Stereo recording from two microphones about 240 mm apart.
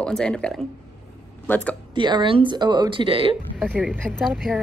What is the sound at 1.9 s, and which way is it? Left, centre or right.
A woman's voice, centre.